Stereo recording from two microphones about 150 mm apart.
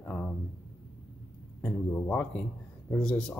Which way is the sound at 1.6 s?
15° left (ahead or behind).